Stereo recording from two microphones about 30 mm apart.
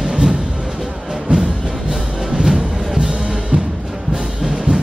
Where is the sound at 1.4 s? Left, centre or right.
Right.